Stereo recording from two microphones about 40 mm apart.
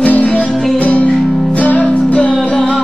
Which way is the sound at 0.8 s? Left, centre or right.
Left.